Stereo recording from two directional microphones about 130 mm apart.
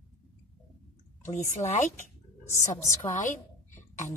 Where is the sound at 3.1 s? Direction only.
75° left (ahead or behind).